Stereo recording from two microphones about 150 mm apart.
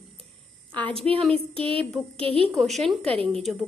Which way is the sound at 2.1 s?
40° right (ahead or behind).